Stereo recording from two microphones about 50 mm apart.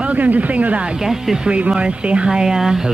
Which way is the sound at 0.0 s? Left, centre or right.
Right.